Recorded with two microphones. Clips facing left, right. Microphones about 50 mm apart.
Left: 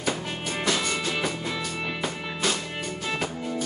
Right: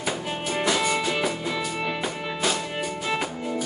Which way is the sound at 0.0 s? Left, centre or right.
Centre.